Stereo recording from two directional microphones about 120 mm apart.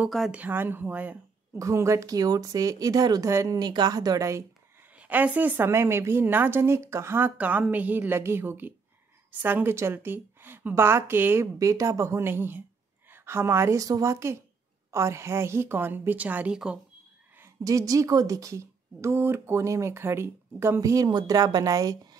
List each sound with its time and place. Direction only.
0.3 s a woman's voice: 15° right (ahead or behind)
1.6 s a woman's voice: 25° right (ahead or behind)
4.9 s a woman's voice: 10° right (ahead or behind)
17.4 s a woman's voice: 30° right (ahead or behind)